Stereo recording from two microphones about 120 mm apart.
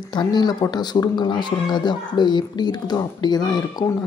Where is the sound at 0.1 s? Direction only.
40° left (ahead or behind).